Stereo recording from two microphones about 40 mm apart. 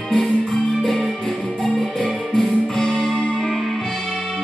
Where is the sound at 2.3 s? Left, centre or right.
Centre.